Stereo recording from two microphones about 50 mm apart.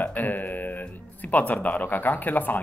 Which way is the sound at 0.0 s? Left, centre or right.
Left.